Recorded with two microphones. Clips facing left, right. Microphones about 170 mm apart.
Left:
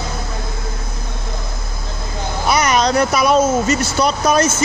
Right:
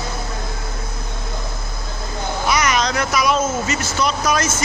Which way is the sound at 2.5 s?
35° left (ahead or behind).